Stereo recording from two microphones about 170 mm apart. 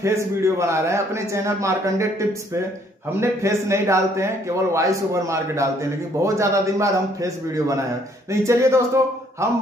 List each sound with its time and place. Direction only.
0.0 s a man's voice: 15° right (ahead or behind)